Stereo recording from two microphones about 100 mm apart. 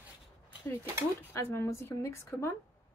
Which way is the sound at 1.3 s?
25° left (ahead or behind).